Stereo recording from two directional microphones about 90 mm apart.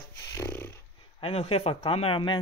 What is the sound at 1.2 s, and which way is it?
Speech, 90° left.